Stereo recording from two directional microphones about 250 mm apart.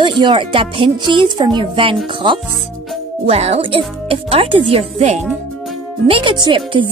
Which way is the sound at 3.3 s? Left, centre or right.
Right.